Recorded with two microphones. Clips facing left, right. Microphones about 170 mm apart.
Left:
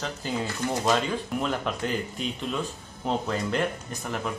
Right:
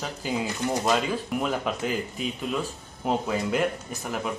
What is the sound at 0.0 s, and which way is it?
Speech, 10° right (ahead or behind).